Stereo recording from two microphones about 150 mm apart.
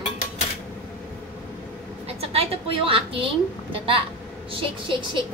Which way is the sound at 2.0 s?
40° right (ahead or behind).